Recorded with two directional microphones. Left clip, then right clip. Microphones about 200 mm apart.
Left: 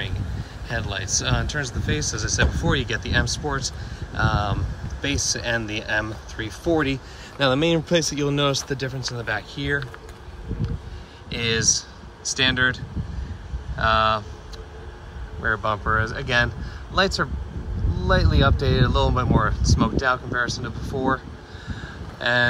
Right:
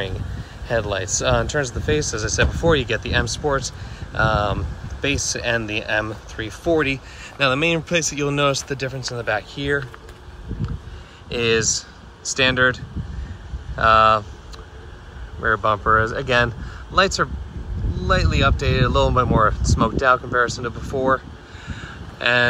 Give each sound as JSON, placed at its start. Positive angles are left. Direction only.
{"t": 0.7, "sound": "speech", "side_deg": 10}
{"t": 11.2, "sound": "speech", "side_deg": 10}
{"t": 15.4, "sound": "speech", "side_deg": 10}
{"t": 21.6, "sound": "vehicle", "side_deg": 15}